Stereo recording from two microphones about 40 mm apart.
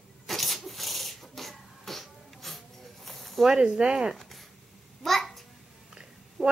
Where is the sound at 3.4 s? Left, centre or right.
Centre.